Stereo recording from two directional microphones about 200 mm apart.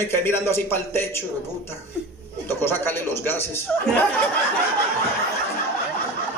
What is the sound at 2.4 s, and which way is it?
A man's voice, 10° left (ahead or behind).